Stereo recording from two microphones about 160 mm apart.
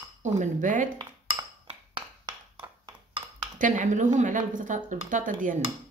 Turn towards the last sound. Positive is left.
turn(degrees=-55)  # may be behind; listen again after turning